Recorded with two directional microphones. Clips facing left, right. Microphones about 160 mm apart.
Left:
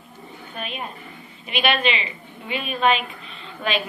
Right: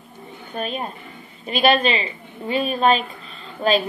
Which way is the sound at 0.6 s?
40° right (ahead or behind).